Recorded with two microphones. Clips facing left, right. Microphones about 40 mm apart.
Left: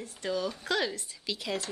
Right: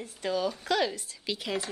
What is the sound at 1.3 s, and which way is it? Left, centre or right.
Speech, centre.